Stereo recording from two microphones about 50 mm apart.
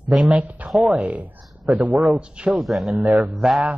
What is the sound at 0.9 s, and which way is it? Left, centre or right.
Speech, right.